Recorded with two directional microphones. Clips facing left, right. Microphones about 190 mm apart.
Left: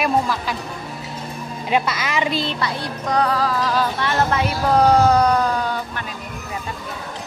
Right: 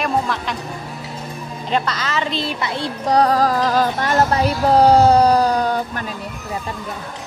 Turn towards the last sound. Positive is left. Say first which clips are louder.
# right 4 dB
turn(degrees=-40)  # may be behind; listen again after turning